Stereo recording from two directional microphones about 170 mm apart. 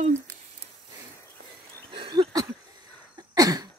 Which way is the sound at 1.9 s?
30° right (ahead or behind).